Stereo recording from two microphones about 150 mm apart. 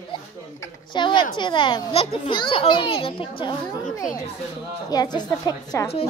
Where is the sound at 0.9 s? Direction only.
30° left (ahead or behind).